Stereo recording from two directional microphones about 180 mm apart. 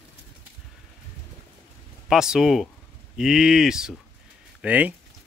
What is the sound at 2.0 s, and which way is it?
Speech, 5° right (ahead or behind).